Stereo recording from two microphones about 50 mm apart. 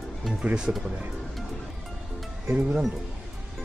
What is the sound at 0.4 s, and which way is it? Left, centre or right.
Speech, right.